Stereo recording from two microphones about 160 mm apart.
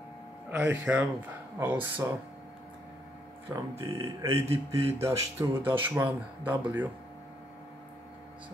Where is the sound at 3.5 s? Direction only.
20° right (ahead or behind).